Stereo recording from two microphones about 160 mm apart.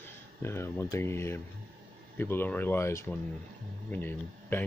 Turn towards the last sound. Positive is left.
turn(degrees=15)  # may be behind; listen again after turning